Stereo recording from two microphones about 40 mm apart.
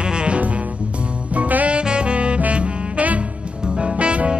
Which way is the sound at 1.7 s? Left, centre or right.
Right.